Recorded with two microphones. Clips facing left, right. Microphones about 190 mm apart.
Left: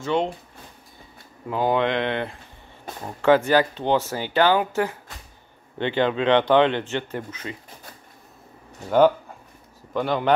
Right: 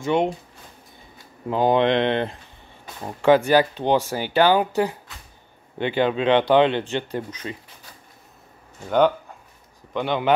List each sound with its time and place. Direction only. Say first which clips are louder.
0.0 s speech: right 2 dB; 15° right (ahead or behind)
1.5 s speech: right 3 dB; 20° right (ahead or behind)
3.2 s speech: right 1 dB; 15° right (ahead or behind)
8.8 s speech: left 2 dB; 5° left (ahead or behind)